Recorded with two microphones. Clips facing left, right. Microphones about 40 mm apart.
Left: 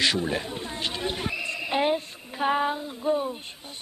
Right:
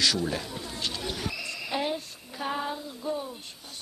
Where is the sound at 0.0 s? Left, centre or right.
Left.